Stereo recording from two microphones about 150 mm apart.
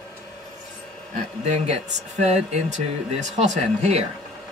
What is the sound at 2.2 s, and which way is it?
Speech, 50° right (ahead or behind).